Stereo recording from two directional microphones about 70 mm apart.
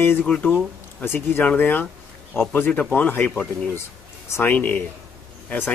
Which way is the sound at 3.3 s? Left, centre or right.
Centre.